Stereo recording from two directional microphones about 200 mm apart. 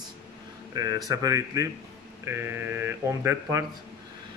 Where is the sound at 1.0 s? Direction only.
15° right (ahead or behind).